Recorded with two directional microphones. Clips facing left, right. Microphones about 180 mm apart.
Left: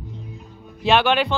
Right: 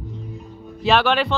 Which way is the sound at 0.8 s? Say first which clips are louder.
Even; centre (ahead or behind).